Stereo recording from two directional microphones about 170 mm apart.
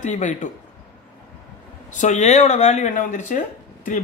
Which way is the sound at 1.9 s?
45° left (ahead or behind).